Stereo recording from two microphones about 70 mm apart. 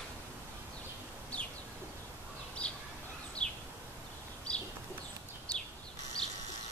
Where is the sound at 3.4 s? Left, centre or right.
Centre.